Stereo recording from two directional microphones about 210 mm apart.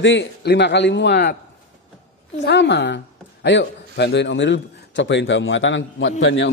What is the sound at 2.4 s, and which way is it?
A man's voice, 55° left (ahead or behind).